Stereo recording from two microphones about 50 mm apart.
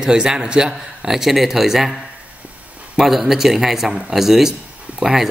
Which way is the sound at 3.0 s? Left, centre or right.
Centre.